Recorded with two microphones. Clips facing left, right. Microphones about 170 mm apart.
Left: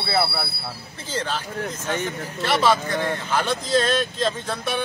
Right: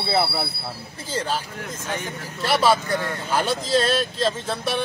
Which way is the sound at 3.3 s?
10° right (ahead or behind).